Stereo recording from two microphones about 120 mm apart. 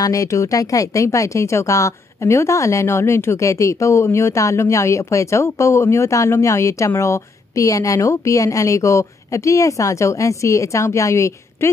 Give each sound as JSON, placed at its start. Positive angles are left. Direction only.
{"t": 0.0, "sound": "speech", "side_deg": 30}